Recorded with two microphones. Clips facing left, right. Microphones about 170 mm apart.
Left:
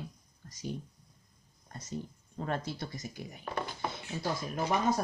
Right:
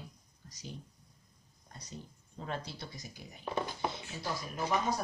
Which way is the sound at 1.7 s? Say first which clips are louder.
Left 8 dB; 50° left (ahead or behind).